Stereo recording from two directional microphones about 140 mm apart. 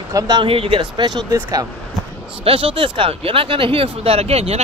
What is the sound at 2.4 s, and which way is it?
Speech, 40° right (ahead or behind).